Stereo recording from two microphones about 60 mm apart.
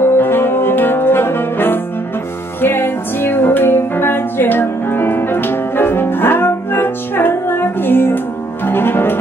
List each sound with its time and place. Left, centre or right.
0.0 s brass instrument: left
2.6 s music: left